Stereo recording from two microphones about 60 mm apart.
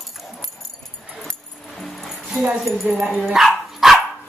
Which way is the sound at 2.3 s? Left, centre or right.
Centre.